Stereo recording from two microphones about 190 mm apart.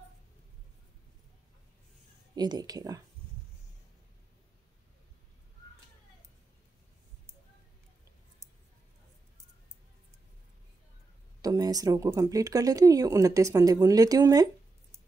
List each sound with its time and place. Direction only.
2.3 s speech: 20° right (ahead or behind)
11.4 s speech: 20° right (ahead or behind)